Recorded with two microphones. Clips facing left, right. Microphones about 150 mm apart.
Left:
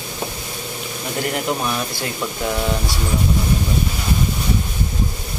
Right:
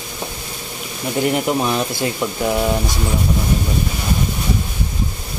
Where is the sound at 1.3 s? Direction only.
20° right (ahead or behind).